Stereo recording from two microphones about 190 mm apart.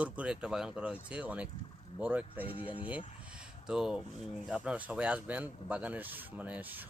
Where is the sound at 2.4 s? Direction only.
25° left (ahead or behind).